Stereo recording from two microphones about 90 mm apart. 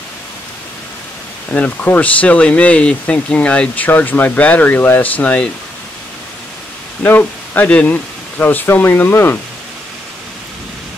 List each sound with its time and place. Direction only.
1.5 s speech: 15° left (ahead or behind)
7.0 s speech: 20° left (ahead or behind)